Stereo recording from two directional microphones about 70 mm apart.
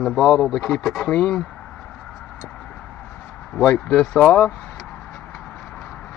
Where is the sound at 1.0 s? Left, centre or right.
Centre.